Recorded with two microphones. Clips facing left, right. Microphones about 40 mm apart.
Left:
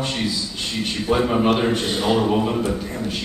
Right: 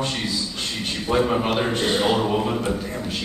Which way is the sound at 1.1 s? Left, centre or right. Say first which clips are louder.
Left 2 dB; centre.